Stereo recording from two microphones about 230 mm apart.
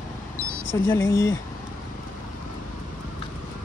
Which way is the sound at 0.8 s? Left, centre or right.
Centre.